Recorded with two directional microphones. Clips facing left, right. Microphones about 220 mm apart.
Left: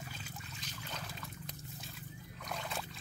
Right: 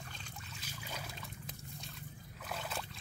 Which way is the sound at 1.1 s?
Centre (ahead or behind).